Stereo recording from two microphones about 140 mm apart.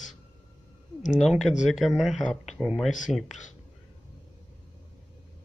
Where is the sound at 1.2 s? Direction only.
Centre (ahead or behind).